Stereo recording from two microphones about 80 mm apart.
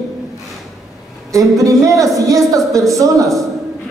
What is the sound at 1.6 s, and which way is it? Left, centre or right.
Speech, right.